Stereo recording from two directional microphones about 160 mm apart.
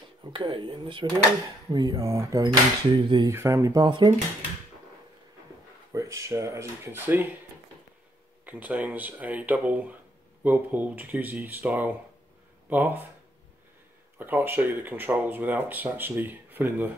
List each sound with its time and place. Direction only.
0.2 s speech: 30° right (ahead or behind)
3.3 s speech: 20° right (ahead or behind)
5.9 s speech: 20° right (ahead or behind)
8.5 s speech: 10° right (ahead or behind)
14.1 s speech: 10° right (ahead or behind)